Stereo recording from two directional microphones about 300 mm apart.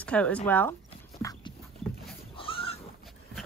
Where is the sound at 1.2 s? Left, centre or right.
Centre.